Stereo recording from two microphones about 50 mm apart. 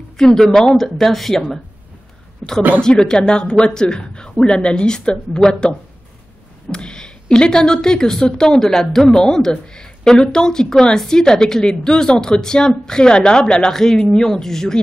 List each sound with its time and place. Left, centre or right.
0.2 s speech: centre
2.4 s a woman's voice: centre